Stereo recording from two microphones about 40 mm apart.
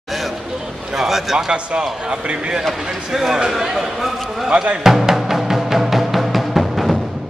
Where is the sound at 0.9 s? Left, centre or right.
Centre.